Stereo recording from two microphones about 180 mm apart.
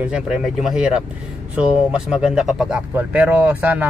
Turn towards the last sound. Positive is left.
turn(degrees=-10)  # may be behind; listen again after turning